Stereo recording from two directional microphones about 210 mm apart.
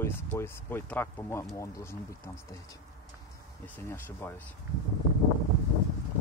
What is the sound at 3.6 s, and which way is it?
Speech, 10° left (ahead or behind).